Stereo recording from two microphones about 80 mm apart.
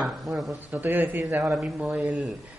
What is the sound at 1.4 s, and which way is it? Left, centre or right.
Speech, centre.